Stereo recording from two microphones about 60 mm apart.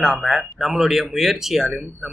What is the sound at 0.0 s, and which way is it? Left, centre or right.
Speech, centre.